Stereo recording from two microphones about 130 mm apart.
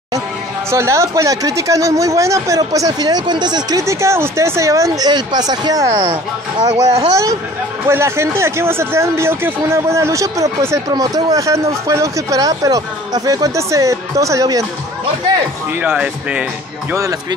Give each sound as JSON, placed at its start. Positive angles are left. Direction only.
{"t": 0.7, "sound": "speech", "side_deg": -20}
{"t": 3.8, "sound": "speech", "side_deg": -20}
{"t": 15.8, "sound": "speech", "side_deg": -10}
{"t": 16.9, "sound": "speech", "side_deg": -25}